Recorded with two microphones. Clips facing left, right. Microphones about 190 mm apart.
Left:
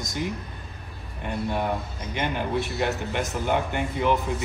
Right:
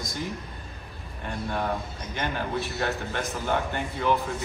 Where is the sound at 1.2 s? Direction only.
15° left (ahead or behind).